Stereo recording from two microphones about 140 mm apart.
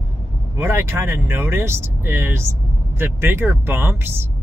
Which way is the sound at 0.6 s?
20° right (ahead or behind).